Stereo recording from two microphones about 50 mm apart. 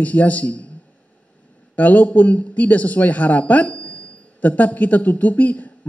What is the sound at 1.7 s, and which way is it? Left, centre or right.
A man's voice, left.